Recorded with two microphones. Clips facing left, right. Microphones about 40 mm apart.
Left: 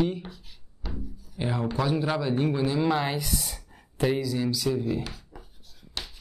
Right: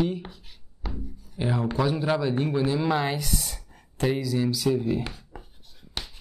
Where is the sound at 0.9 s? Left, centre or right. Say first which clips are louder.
Even; centre.